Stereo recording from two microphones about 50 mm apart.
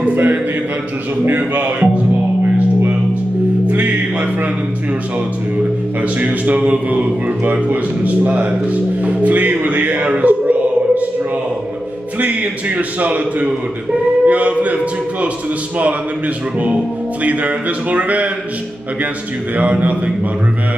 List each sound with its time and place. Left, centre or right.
0.0 s speech: right
2.4 s music: right
6.1 s speech: right
12.2 s speech: right
16.5 s speech: right
19.5 s speech: right